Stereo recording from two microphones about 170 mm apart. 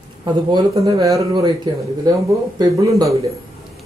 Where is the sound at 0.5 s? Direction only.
20° right (ahead or behind).